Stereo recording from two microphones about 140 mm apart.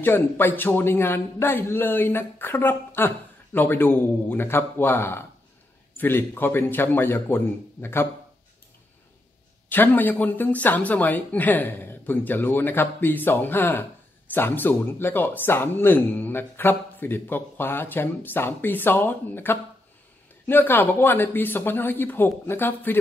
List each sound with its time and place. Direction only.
0.0 s speech: 15° left (ahead or behind)
9.7 s speech: 15° left (ahead or behind)